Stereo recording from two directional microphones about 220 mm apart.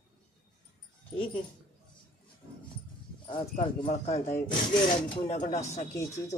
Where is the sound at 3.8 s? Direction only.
30° left (ahead or behind).